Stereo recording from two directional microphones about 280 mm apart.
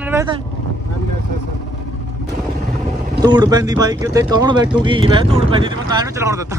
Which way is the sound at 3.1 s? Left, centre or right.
Centre.